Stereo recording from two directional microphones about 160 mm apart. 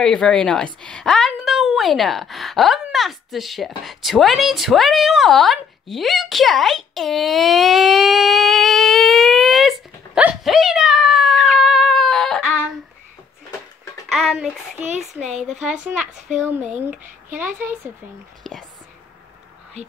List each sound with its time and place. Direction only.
0.0 s a woman's voice: 5° left (ahead or behind)
14.3 s speech: 10° right (ahead or behind)
15.5 s speech: 45° right (ahead or behind)
15.8 s speech: 5° right (ahead or behind)
18.4 s speech: centre (ahead or behind)